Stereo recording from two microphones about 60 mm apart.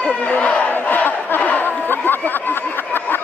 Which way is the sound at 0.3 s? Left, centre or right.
Left.